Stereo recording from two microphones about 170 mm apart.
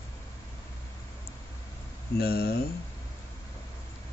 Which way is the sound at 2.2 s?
65° left (ahead or behind).